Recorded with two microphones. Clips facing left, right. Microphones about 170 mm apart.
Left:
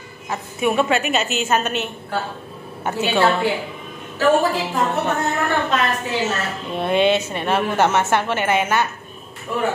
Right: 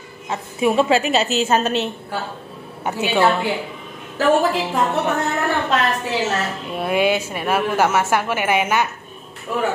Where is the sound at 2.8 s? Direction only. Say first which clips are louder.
Even; 15° right (ahead or behind).